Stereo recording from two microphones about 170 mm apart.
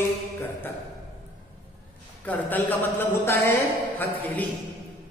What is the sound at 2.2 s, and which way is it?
A man's voice, 10° left (ahead or behind).